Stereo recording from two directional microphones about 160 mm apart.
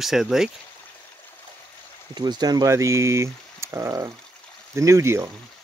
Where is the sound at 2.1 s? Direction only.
25° right (ahead or behind).